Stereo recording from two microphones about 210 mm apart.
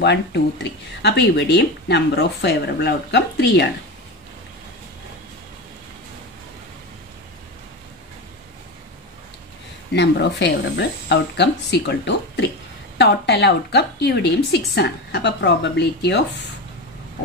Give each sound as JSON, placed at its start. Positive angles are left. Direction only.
{"t": 0.0, "sound": "a woman's voice", "side_deg": 55}
{"t": 10.4, "sound": "a woman's voice", "side_deg": 55}